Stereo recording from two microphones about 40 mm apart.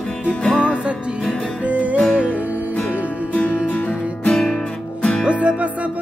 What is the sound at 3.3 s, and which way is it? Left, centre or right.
Music, left.